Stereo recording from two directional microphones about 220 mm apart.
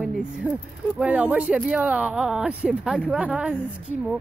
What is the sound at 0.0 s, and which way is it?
Speech, 5° right (ahead or behind).